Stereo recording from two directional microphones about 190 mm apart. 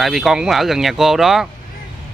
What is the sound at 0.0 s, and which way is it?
Speech, centre (ahead or behind).